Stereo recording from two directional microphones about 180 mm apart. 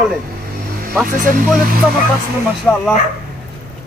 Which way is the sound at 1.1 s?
50° right (ahead or behind).